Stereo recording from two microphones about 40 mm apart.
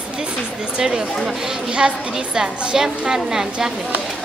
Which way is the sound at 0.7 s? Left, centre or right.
Centre.